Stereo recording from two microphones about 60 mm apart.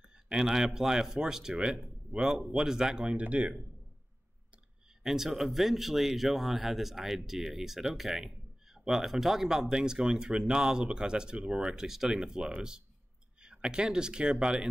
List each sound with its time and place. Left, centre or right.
0.0 s speech: centre
3.1 s speech: right
5.0 s speech: centre